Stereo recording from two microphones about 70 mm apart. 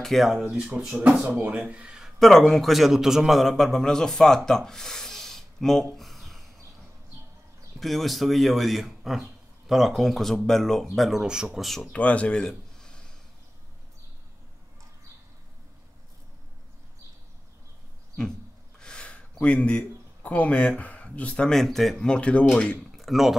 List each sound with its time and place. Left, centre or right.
0.0 s speech: centre
0.5 s speech: centre
2.0 s a man's voice: centre
7.8 s speech: centre
11.6 s speech: centre
11.9 s speech: centre
18.8 s a sound: centre
19.3 s speech: centre
21.5 s speech: centre
22.0 s speech: centre
22.8 s a sound: centre